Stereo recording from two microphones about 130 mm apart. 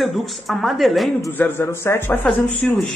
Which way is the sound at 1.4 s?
15° left (ahead or behind).